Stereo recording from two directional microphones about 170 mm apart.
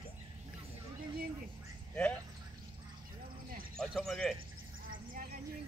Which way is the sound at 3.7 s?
Centre (ahead or behind).